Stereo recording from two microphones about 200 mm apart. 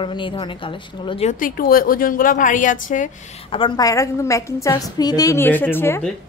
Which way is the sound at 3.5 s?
25° left (ahead or behind).